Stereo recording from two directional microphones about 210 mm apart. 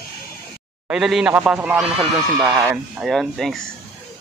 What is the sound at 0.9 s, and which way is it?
A man's voice, 5° right (ahead or behind).